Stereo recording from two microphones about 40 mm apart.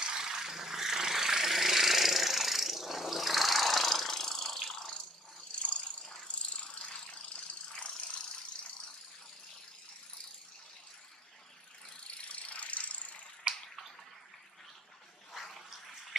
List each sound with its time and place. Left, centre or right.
0.0 s vehicle: centre
5.5 s a sound: left
6.2 s rattle: left
12.3 s ratchet: left
13.5 s bathtub: right
15.3 s cat: centre